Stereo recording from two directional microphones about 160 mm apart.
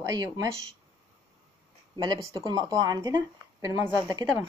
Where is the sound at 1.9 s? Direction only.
25° right (ahead or behind).